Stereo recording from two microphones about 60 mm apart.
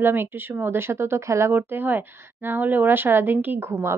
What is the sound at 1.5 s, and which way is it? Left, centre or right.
A woman's voice, right.